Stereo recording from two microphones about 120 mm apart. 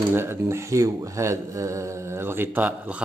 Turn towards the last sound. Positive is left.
turn(degrees=-15)  # may be behind; listen again after turning